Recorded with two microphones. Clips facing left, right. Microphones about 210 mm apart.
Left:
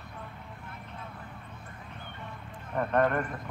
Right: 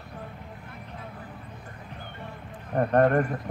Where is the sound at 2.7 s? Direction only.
40° right (ahead or behind).